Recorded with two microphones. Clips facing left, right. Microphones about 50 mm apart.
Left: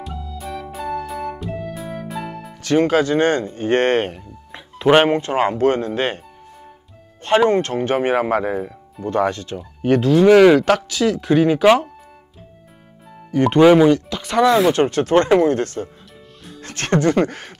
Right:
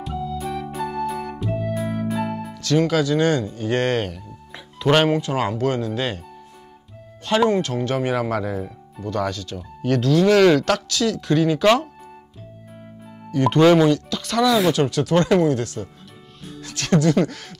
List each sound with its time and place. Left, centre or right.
0.0 s music: centre
2.6 s speech: left
7.2 s speech: left
8.5 s music: centre
9.0 s speech: left
13.3 s speech: centre; by 17.6 s left